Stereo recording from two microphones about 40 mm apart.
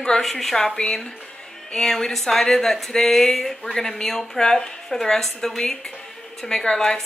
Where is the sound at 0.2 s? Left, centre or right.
Centre.